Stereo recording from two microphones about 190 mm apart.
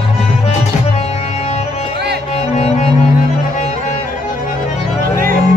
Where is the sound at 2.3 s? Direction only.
35° left (ahead or behind).